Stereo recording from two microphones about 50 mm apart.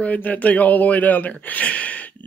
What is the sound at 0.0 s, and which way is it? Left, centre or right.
Speech, left.